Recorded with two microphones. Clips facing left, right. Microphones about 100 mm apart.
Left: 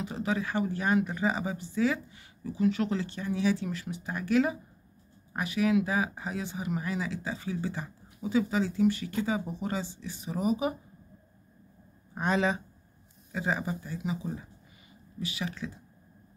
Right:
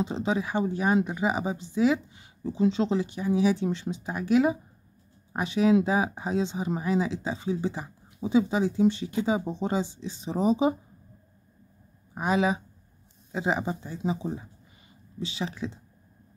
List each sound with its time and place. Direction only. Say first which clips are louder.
0.0 s speech: right 4 dB; 20° right (ahead or behind)
12.1 s speech: right 3 dB; 10° right (ahead or behind)
13.3 s speech: right 4 dB; 20° right (ahead or behind)